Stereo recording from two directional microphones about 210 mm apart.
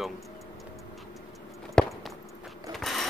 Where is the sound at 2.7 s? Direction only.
Centre (ahead or behind).